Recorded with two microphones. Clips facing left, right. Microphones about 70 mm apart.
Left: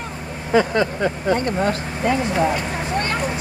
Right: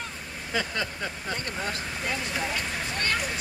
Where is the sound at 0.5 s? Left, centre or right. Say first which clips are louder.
Left 13 dB; left.